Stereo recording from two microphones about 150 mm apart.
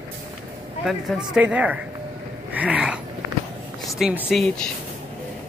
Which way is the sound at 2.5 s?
10° right (ahead or behind).